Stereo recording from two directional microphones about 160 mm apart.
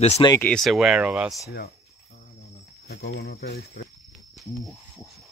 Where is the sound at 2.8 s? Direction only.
90° left.